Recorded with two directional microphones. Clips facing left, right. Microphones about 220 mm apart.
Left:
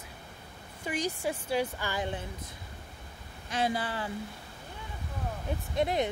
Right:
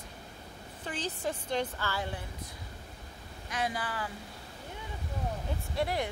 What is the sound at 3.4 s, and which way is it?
Speech, 30° left (ahead or behind).